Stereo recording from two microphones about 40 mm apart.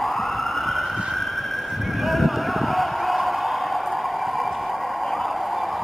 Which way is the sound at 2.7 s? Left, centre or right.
Centre.